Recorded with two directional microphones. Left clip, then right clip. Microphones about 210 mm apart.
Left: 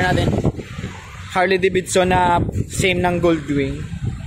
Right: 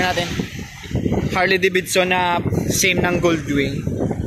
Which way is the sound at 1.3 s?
10° left (ahead or behind).